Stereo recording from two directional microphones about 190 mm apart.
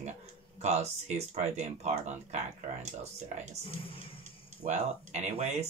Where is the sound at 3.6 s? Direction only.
30° left (ahead or behind).